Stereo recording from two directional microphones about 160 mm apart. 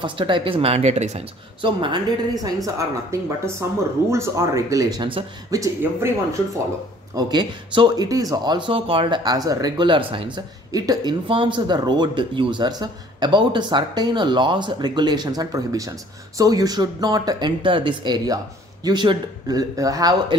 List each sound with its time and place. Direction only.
0.0 s speech: 30° right (ahead or behind)
1.6 s speech: 30° right (ahead or behind)
2.4 s speech: 20° right (ahead or behind)
7.2 s speech: 25° right (ahead or behind)